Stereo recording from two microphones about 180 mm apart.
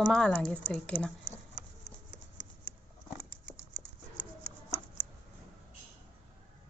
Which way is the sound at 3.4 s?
50° left (ahead or behind).